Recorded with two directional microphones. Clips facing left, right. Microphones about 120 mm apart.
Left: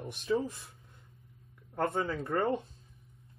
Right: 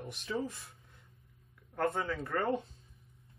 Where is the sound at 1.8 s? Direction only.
25° left (ahead or behind).